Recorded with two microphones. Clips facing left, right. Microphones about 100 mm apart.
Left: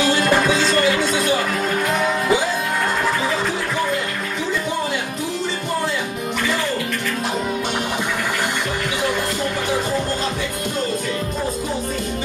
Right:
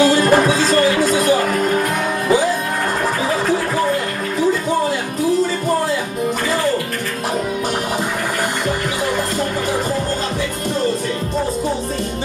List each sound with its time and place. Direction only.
0.0 s music: 40° right (ahead or behind)